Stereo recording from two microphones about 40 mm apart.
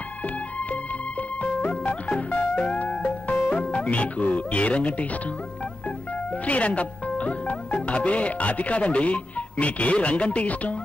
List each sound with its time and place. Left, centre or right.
1.4 s music: left
3.5 s speech: left
6.4 s speech: left